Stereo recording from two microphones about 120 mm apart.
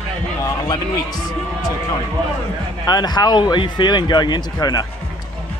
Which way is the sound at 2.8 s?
35° left (ahead or behind).